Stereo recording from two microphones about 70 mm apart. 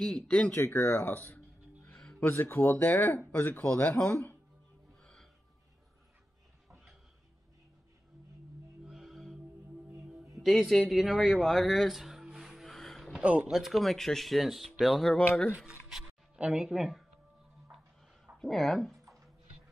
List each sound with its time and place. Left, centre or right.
0.0 s speech: centre
0.6 s music: left
2.3 s speech: left
3.6 s speech: left
5.0 s music: centre
8.8 s music: centre
10.3 s speech: centre
11.3 s a sound: centre
13.1 s speech: centre
13.5 s speech: centre
16.3 s speech: centre
18.4 s speech: centre